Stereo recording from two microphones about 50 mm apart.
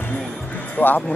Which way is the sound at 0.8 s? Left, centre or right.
Left.